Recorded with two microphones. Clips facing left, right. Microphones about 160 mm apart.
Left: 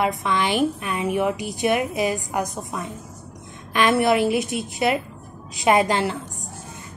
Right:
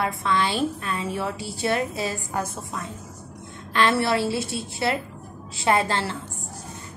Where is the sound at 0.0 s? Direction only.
20° left (ahead or behind).